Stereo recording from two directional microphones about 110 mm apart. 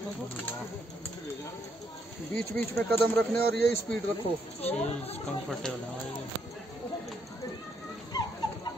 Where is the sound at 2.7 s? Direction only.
20° left (ahead or behind).